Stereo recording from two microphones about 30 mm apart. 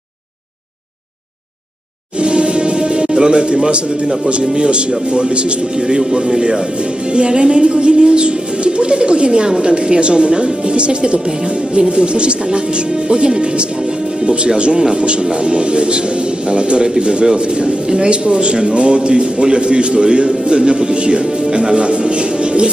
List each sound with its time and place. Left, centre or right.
2.1 s music: right
4.6 s a man's voice: right